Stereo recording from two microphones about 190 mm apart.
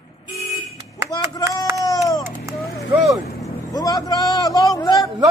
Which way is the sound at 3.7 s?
20° left (ahead or behind).